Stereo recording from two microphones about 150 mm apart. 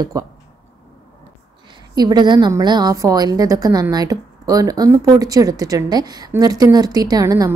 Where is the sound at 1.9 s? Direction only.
25° right (ahead or behind).